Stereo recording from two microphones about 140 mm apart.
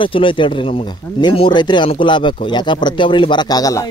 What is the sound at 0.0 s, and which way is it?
Speech, 35° left (ahead or behind).